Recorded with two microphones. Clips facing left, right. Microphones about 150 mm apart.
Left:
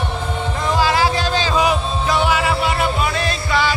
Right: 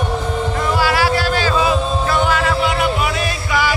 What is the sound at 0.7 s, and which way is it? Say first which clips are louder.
Music: left 1 dB; 20° left (ahead or behind).